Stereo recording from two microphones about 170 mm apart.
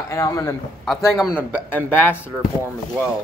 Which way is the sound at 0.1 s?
20° left (ahead or behind).